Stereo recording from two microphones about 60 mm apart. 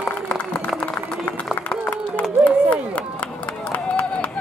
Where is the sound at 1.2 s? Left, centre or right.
Left.